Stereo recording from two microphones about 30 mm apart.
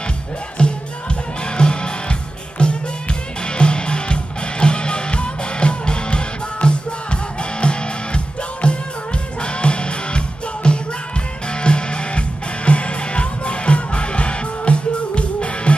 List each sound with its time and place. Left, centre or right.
0.6 s music: left